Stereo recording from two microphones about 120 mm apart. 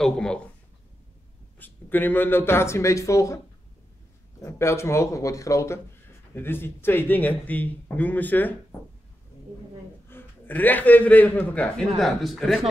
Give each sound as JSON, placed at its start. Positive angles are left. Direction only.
{"t": 0.0, "sound": "speech", "side_deg": 5}
{"t": 1.6, "sound": "speech", "side_deg": 15}
{"t": 4.4, "sound": "speech", "side_deg": 25}
{"t": 10.0, "sound": "a man's voice", "side_deg": 15}
{"t": 12.0, "sound": "speech", "side_deg": 0}